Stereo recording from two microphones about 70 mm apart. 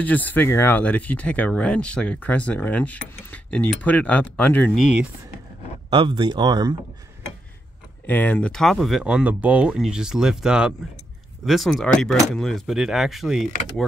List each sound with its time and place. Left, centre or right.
0.0 s speech: left
5.9 s speech: right
8.1 s speech: left
8.5 s speech: centre
9.0 s speech: centre
9.8 s speech: centre
12.7 s speech: centre